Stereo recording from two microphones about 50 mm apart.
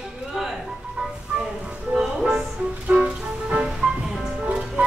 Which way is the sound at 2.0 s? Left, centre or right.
Centre.